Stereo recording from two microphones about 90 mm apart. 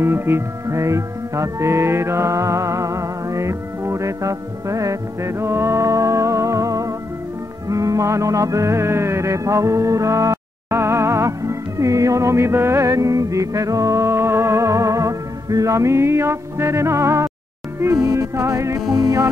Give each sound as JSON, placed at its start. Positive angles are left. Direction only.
{"t": 0.0, "sound": "music", "side_deg": -25}